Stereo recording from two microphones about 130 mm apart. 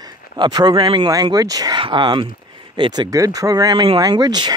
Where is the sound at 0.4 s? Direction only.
35° right (ahead or behind).